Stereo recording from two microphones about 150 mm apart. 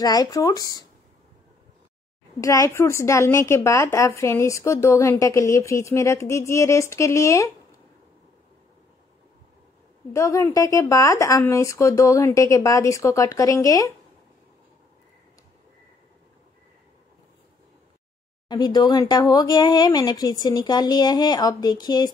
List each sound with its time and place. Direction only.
0.0 s a woman's voice: 25° left (ahead or behind)
2.4 s a woman's voice: 20° left (ahead or behind)
10.1 s a woman's voice: 20° left (ahead or behind)
18.5 s a woman's voice: 30° left (ahead or behind)